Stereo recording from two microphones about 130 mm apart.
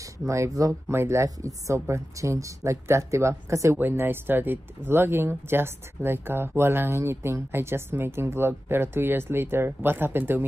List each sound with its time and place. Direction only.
0.3 s speech: 25° right (ahead or behind)